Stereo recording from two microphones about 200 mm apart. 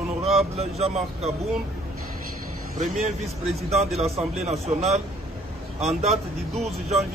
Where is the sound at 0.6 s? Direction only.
30° right (ahead or behind).